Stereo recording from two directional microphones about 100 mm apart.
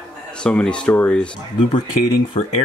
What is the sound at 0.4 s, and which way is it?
Speech, 10° left (ahead or behind).